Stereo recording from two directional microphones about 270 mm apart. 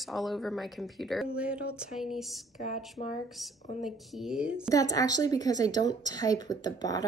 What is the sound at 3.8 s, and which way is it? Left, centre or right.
Speech, centre.